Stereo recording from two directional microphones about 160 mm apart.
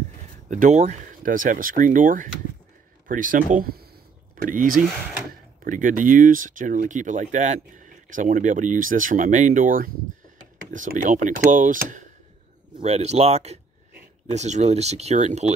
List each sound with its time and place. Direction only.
0.5 s speech: 50° right (ahead or behind)
12.7 s speech: 40° right (ahead or behind)